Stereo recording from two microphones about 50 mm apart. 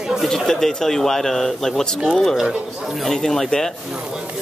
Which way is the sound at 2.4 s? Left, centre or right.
Centre.